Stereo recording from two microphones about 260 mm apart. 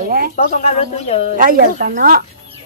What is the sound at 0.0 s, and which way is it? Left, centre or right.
Speech, right.